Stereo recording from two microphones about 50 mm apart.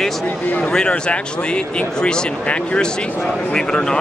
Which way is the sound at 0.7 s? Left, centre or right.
Centre.